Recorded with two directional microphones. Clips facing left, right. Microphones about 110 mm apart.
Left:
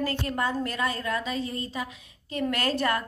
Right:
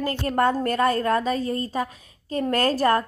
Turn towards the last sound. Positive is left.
turn(degrees=-40)  # may be behind; listen again after turning